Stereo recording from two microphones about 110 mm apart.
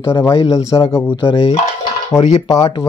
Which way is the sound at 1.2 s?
50° left (ahead or behind).